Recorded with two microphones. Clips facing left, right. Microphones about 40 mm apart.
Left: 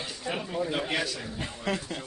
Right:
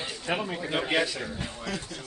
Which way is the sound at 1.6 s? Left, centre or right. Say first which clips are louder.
Left 7 dB; left.